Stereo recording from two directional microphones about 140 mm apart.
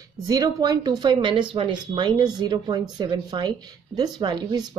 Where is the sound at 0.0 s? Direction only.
25° right (ahead or behind).